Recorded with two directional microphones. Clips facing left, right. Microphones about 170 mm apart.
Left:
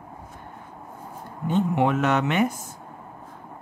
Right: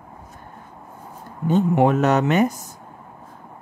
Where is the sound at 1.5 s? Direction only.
40° right (ahead or behind).